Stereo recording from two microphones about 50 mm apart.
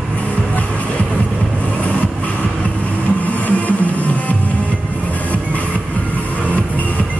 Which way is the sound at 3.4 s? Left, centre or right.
Left.